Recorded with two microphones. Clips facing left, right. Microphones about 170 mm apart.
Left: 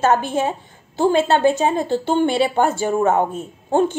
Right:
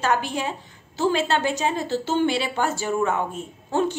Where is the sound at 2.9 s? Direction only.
40° left (ahead or behind).